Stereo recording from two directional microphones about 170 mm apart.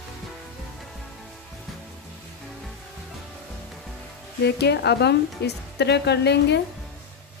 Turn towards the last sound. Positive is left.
turn(degrees=85)